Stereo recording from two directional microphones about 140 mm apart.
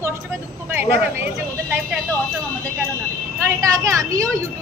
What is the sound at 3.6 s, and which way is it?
Speech, 25° right (ahead or behind).